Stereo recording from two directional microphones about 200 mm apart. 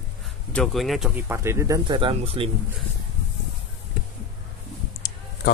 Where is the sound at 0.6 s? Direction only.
Centre (ahead or behind).